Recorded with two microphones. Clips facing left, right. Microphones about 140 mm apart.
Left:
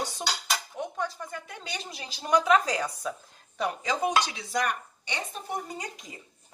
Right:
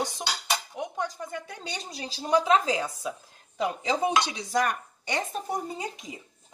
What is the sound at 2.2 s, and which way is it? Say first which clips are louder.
Speech: even; 25° right (ahead or behind).